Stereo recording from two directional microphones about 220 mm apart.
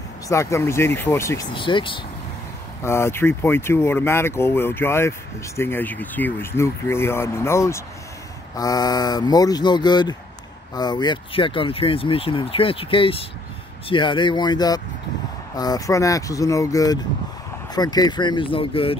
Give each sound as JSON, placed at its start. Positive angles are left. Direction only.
{"t": 0.3, "sound": "speech", "side_deg": 15}
{"t": 2.8, "sound": "speech", "side_deg": 10}